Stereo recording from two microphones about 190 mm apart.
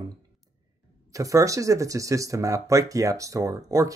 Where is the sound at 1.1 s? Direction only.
15° right (ahead or behind).